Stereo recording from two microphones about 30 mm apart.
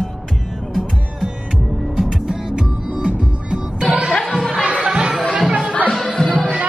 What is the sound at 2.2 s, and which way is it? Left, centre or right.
Music, right.